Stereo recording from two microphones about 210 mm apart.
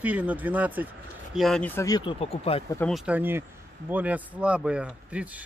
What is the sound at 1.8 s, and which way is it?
Speech, 20° left (ahead or behind).